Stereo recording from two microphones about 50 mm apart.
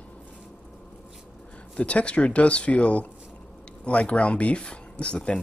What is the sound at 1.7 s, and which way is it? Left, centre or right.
Speech, left.